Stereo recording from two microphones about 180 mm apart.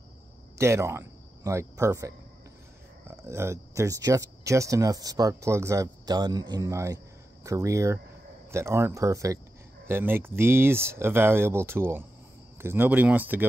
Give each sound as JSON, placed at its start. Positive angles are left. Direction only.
{"t": 0.6, "sound": "speech", "side_deg": -15}
{"t": 3.3, "sound": "speech", "side_deg": -15}